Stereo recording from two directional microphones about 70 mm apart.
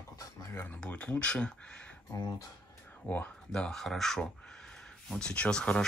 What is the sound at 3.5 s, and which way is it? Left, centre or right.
Speech, centre.